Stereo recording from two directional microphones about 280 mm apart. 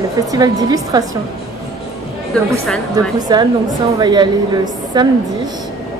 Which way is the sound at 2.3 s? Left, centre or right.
Centre.